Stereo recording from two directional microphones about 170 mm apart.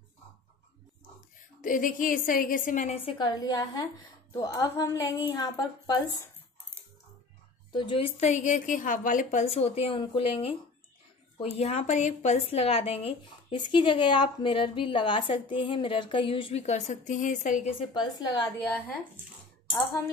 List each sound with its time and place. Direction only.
1.6 s a woman's voice: 50° left (ahead or behind)
3.1 s speech: 30° left (ahead or behind)
7.7 s speech: 30° left (ahead or behind)
11.5 s speech: 40° left (ahead or behind)
17.7 s speech: 25° left (ahead or behind)